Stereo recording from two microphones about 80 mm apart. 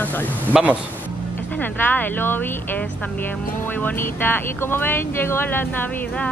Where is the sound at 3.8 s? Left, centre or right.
Left.